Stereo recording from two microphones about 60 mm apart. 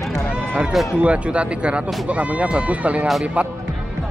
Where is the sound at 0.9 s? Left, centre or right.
Right.